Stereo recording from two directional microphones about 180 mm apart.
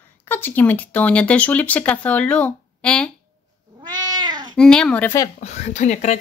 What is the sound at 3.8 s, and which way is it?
Cat, 25° right (ahead or behind).